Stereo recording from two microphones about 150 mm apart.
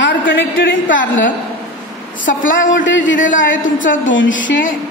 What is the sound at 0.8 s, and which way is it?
Speech, 60° left (ahead or behind).